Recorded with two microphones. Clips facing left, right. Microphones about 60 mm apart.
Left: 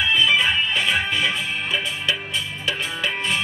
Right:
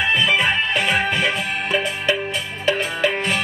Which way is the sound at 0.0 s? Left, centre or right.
Right.